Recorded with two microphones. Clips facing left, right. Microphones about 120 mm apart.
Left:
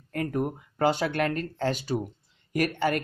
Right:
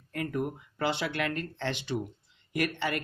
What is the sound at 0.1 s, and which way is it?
Speech, 40° left (ahead or behind).